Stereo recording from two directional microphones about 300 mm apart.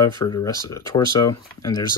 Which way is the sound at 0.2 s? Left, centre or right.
Centre.